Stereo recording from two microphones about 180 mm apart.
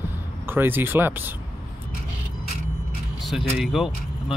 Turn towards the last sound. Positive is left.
turn(degrees=0)  # may be behind; listen again after turning